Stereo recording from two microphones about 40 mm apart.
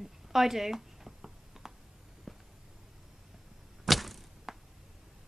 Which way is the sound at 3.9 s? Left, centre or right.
Centre.